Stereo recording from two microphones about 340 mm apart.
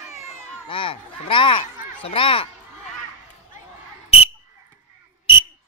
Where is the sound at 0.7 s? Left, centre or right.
Centre.